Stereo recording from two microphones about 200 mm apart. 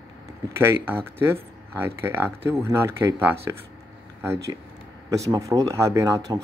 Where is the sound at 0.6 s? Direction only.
10° right (ahead or behind).